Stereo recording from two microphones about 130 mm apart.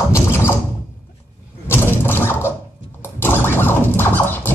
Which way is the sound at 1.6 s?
15° left (ahead or behind).